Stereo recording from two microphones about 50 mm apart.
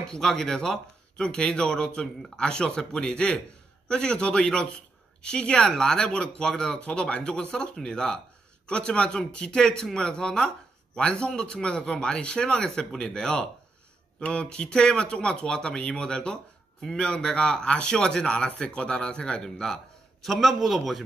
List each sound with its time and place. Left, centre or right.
0.1 s a man's voice: centre
20.2 s a man's voice: centre